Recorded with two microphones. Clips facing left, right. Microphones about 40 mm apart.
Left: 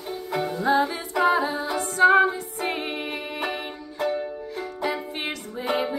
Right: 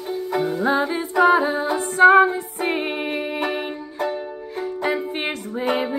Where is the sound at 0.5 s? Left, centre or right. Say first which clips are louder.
Left 1 dB; right.